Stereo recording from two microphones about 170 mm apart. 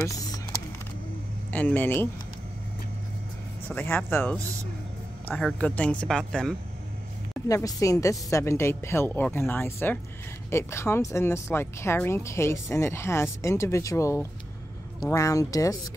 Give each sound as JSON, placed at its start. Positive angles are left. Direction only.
{"t": 0.0, "sound": "typing", "side_deg": 20}
{"t": 1.5, "sound": "speech", "side_deg": 10}
{"t": 3.6, "sound": "speech", "side_deg": 10}
{"t": 7.4, "sound": "speech", "side_deg": 20}